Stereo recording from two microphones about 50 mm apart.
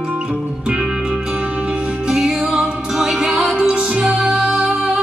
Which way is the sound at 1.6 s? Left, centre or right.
Centre.